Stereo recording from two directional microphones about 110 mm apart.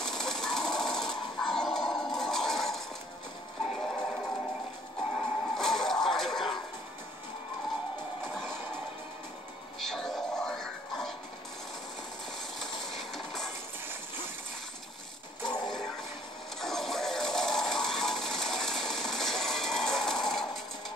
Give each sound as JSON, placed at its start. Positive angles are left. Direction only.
{"t": 0.0, "sound": "sewing machine", "side_deg": 5}
{"t": 3.7, "sound": "music", "side_deg": 0}
{"t": 9.8, "sound": "music", "side_deg": 5}
{"t": 12.5, "sound": "train", "side_deg": 5}
{"t": 15.4, "sound": "a sound", "side_deg": 40}
{"t": 16.6, "sound": "music", "side_deg": 5}